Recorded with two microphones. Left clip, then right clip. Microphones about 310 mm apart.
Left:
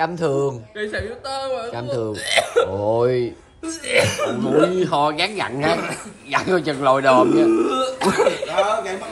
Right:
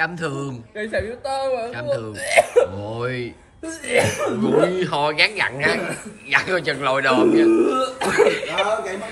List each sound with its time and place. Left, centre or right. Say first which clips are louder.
0.0 s speech: left 4 dB; centre
0.9 s speech: right 6 dB; centre
1.8 s speech: right 1 dB; centre
2.2 s speech: right 3 dB; centre
2.9 s speech: left 8 dB; centre
3.6 s speech: left 1 dB; centre
4.6 s speech: left 2 dB; centre
7.4 s speech: right 1 dB; centre
8.6 s a man's voice: left 1 dB; centre